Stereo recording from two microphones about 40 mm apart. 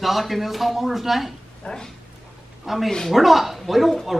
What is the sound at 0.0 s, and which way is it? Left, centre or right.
A man's voice, centre.